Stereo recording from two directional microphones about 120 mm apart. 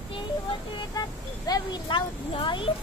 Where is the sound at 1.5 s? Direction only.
40° left (ahead or behind).